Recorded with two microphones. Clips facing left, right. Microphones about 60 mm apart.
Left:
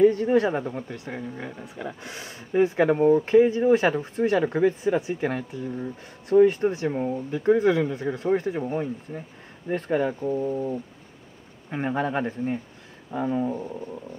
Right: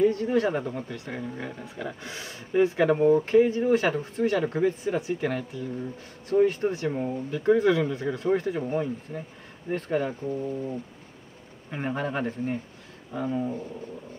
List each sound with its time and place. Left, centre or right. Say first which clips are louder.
0.1 s speech: left 3 dB; left
1.1 s speech: right 1 dB; centre
2.0 s speech: even; left
6.3 s speech: left 4 dB; left
6.9 s speech: left 2 dB; centre
7.2 s speech: even; left
9.7 s speech: left 3 dB; left
11.7 s speech: left 3 dB; left